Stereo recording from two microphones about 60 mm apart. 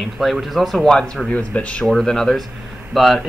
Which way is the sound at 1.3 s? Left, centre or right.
Left.